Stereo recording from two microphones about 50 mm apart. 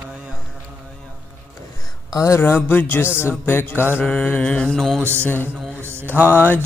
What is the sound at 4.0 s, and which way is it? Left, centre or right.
Music, left.